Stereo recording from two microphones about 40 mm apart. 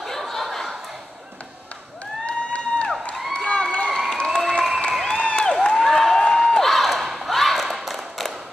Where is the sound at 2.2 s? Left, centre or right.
Left.